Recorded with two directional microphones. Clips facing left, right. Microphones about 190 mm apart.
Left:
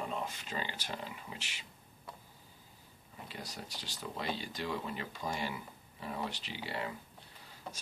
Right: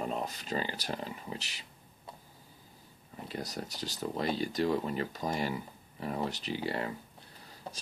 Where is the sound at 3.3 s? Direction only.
40° right (ahead or behind).